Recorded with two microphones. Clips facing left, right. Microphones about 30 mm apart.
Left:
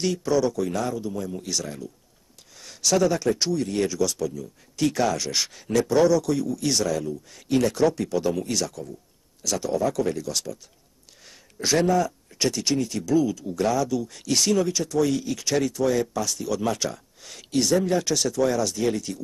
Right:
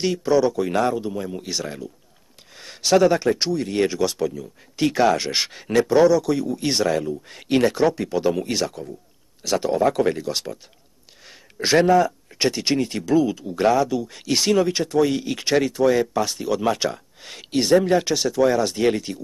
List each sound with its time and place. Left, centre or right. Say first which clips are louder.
0.0 s speech: right 4 dB; right
0.7 s speech: right 6 dB; right
5.9 s speech: right 3 dB; centre
7.2 s speech: right 3 dB; right
7.7 s speech: right 2 dB; right
18.7 s speech: right 4 dB; right